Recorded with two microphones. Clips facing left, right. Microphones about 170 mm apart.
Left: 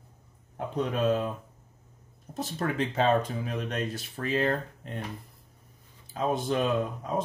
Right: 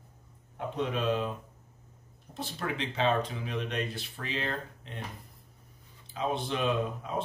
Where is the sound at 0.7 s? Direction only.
40° left (ahead or behind).